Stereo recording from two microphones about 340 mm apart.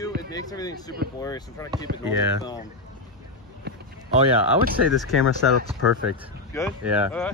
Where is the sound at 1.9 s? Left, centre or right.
Right.